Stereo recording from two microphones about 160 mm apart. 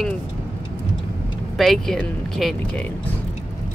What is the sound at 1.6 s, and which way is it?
Speech, centre (ahead or behind).